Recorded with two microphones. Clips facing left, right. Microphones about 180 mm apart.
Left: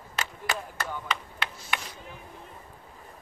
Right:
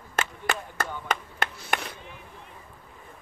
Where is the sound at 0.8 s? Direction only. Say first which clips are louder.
Right 3 dB; 50° right (ahead or behind).